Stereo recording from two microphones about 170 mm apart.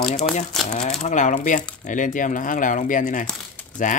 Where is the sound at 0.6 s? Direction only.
Centre (ahead or behind).